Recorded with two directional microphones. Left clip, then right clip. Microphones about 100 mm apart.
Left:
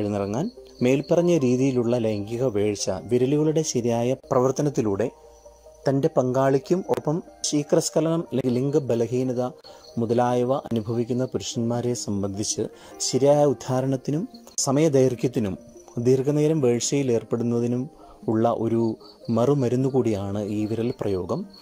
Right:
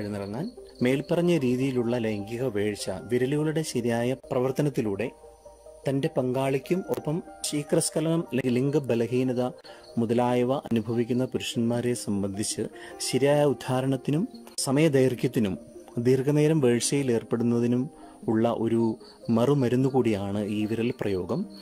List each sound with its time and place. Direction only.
0.0 s speech: 15° left (ahead or behind)
0.7 s a man's voice: 5° right (ahead or behind)
5.9 s a man's voice: 5° right (ahead or behind)
8.6 s speech: 25° right (ahead or behind)
19.3 s speech: 15° right (ahead or behind)